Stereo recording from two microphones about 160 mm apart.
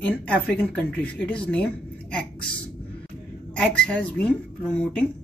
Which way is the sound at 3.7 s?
5° left (ahead or behind).